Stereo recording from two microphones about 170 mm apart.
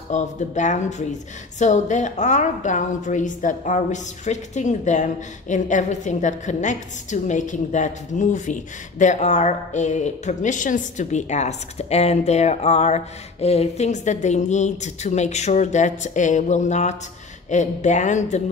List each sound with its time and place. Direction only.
0.1 s a woman's voice: 45° left (ahead or behind)